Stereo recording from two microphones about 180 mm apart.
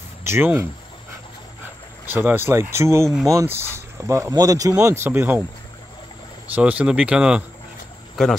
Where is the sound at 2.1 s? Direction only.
10° right (ahead or behind).